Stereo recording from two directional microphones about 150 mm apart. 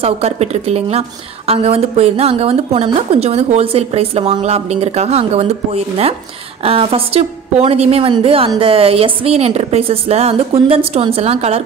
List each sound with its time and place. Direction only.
0.0 s a woman's voice: 45° right (ahead or behind)